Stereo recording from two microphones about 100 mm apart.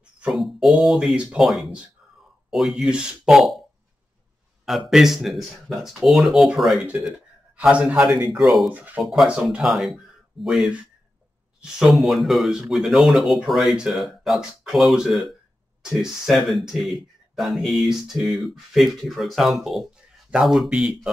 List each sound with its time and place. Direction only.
0.3 s speech: centre (ahead or behind)
4.6 s a man's voice: 5° right (ahead or behind)
8.7 s speech: 15° right (ahead or behind)
9.0 s speech: centre (ahead or behind)